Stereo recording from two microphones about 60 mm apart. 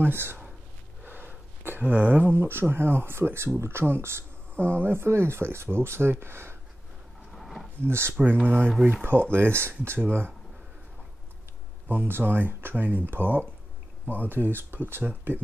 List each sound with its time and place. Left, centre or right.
0.0 s speech: right
7.3 s a sound: centre
7.8 s speech: right
8.1 s speech: right
11.9 s speech: right